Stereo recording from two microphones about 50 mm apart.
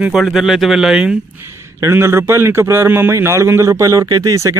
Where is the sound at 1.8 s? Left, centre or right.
Right.